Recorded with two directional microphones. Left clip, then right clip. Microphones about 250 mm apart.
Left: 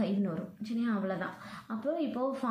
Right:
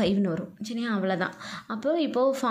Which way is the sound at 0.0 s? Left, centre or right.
Right.